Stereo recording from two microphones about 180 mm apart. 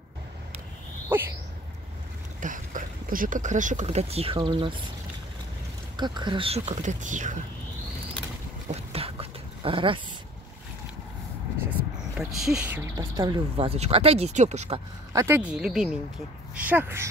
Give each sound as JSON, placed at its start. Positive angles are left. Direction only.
{"t": 1.1, "sound": "speech", "side_deg": -10}
{"t": 2.4, "sound": "speech", "side_deg": -45}
{"t": 5.9, "sound": "speech", "side_deg": -25}
{"t": 8.6, "sound": "a sound", "side_deg": -35}
{"t": 12.2, "sound": "speech", "side_deg": 0}
{"t": 15.1, "sound": "speech", "side_deg": -10}